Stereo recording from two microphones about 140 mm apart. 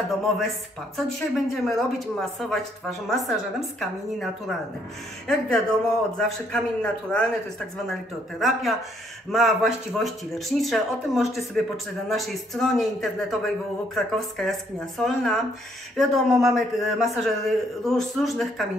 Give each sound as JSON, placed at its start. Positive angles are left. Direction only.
{"t": 0.9, "sound": "a man's voice", "side_deg": 0}
{"t": 8.4, "sound": "a man's voice", "side_deg": 0}